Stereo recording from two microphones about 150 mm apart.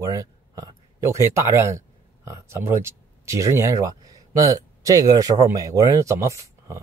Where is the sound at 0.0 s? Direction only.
20° right (ahead or behind).